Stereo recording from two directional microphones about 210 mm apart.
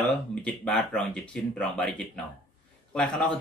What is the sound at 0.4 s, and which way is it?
A man's voice, 5° left (ahead or behind).